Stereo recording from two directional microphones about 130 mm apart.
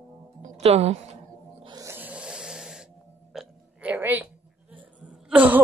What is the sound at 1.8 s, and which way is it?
Snort, 20° right (ahead or behind).